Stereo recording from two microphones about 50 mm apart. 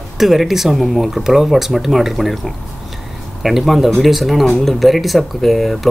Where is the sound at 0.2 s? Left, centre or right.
Centre.